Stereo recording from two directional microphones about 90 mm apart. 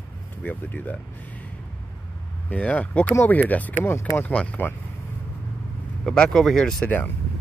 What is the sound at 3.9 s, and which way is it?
Speech, 30° left (ahead or behind).